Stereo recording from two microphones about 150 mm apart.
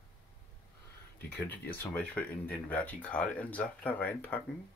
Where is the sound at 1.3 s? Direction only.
10° left (ahead or behind).